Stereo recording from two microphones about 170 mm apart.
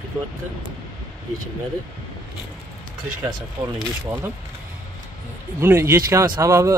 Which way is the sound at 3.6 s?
20° right (ahead or behind).